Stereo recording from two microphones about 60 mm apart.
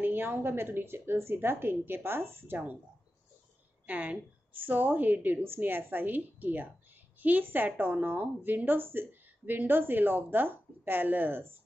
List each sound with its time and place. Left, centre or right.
0.0 s speech: right
3.8 s speech: right